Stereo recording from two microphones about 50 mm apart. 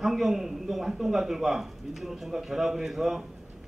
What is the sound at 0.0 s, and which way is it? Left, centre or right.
A man's voice, centre.